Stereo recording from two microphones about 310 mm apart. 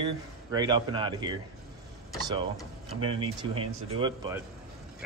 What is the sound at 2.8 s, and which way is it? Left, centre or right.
Speech, centre.